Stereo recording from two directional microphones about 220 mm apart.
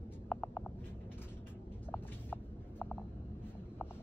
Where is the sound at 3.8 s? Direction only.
5° left (ahead or behind).